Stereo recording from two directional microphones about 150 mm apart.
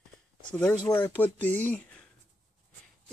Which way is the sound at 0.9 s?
10° left (ahead or behind).